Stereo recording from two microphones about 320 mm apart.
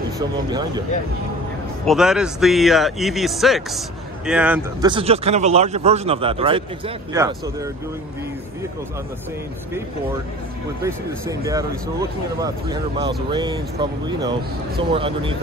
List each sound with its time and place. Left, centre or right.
0.5 s speech: centre
1.9 s speech: centre
4.9 s a man's voice: centre
10.8 s speech: centre